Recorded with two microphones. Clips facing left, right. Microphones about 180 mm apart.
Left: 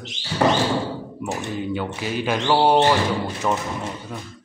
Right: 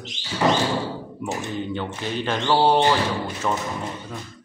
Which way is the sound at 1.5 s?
5° left (ahead or behind).